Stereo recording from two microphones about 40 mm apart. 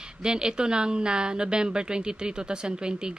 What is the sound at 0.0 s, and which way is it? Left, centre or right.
Speech, right.